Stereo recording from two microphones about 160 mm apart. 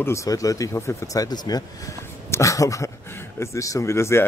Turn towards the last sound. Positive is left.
turn(degrees=15)  # may be behind; listen again after turning